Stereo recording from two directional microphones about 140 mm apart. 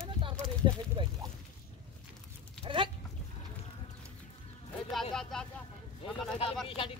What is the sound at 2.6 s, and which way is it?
Livestock, 35° right (ahead or behind).